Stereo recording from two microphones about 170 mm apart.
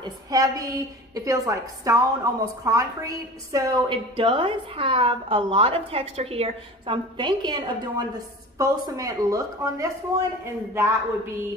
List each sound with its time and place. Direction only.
0.0 s a woman's voice: 20° right (ahead or behind)